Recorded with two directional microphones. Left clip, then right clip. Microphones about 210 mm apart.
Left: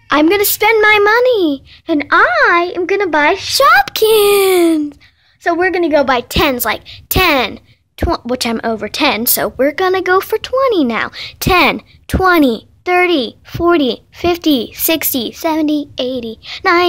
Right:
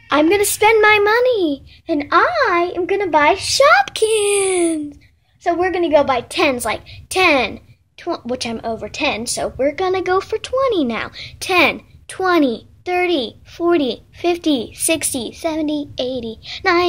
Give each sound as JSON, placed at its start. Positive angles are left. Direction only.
{"t": 0.1, "sound": "speech", "side_deg": 10}
{"t": 3.4, "sound": "speech", "side_deg": 20}
{"t": 5.4, "sound": "speech", "side_deg": 25}